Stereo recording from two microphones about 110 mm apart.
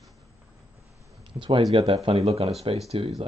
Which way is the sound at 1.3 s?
50° right (ahead or behind).